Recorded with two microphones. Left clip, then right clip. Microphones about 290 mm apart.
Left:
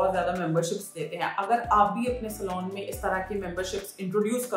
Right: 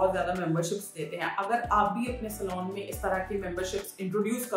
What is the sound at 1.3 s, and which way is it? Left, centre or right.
Speech, centre.